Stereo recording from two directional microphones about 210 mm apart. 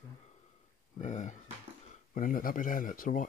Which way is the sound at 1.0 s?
35° left (ahead or behind).